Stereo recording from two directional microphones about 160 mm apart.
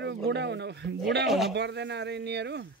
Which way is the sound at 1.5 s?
90° right.